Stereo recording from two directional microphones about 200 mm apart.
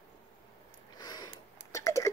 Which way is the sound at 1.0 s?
20° left (ahead or behind).